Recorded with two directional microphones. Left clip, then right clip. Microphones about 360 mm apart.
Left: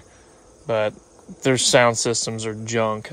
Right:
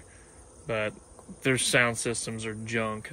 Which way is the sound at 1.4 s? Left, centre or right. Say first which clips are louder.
Left 8 dB; centre.